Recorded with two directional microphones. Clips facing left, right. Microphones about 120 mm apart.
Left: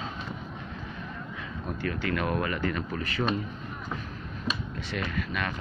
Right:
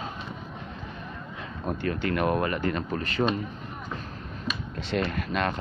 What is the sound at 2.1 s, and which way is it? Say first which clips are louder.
Speech: right 4 dB; 30° right (ahead or behind).